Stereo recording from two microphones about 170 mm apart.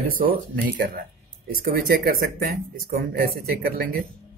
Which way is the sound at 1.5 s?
60° right (ahead or behind).